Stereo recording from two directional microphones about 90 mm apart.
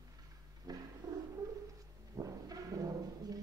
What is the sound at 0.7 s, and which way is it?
Cat, 45° right (ahead or behind).